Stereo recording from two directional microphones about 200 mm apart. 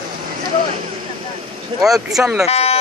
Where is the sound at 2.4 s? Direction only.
30° left (ahead or behind).